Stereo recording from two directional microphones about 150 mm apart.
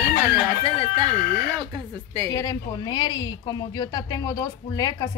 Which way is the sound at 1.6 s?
30° right (ahead or behind).